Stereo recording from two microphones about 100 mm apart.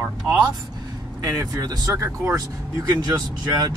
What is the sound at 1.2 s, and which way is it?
Speech, 35° right (ahead or behind).